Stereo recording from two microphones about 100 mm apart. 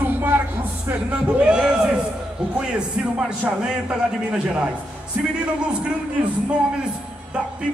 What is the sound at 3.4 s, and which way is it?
A man's voice, 10° right (ahead or behind).